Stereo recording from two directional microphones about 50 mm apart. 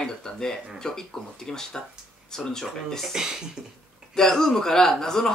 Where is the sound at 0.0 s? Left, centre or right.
Centre.